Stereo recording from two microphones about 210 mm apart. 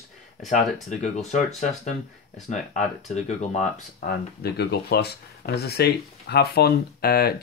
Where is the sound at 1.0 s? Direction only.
35° left (ahead or behind).